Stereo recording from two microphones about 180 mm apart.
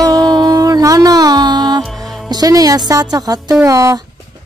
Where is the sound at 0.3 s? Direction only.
25° right (ahead or behind).